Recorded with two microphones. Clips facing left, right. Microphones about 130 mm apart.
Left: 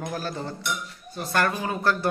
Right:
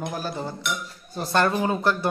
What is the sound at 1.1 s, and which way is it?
Speech, 25° right (ahead or behind).